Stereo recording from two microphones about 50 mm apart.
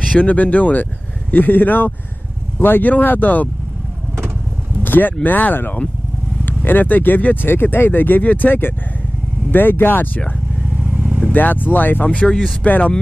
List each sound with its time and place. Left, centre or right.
0.2 s speech: left
4.8 s vehicle: left
5.2 s speech: left
11.0 s vehicle: right
11.3 s speech: left
12.2 s speech: left